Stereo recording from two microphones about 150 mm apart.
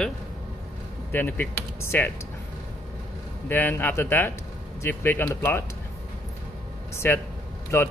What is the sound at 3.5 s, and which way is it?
Speech, 15° left (ahead or behind).